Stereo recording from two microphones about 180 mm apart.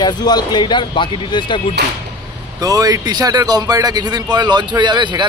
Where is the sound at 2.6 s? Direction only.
20° right (ahead or behind).